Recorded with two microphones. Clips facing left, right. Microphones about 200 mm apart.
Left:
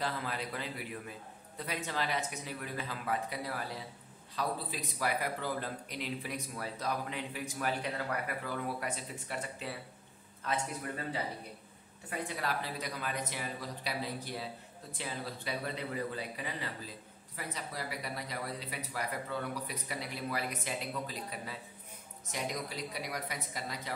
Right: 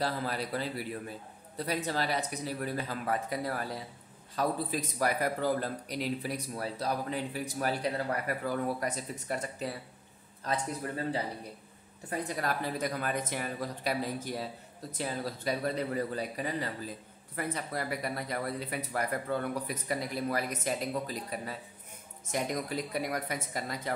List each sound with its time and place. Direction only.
0.0 s a man's voice: 35° right (ahead or behind)
17.4 s speech: 55° right (ahead or behind)